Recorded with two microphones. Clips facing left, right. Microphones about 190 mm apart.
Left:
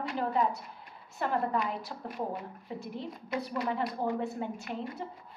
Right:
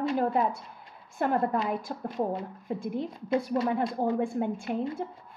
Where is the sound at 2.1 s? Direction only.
25° right (ahead or behind).